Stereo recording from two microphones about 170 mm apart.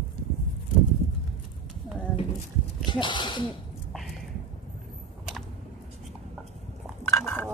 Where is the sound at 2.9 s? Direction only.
25° left (ahead or behind).